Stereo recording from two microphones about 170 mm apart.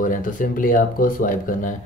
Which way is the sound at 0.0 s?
50° left (ahead or behind).